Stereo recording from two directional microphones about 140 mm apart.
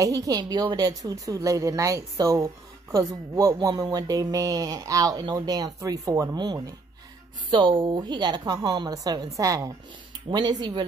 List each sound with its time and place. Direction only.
0.0 s a woman's voice: 25° right (ahead or behind)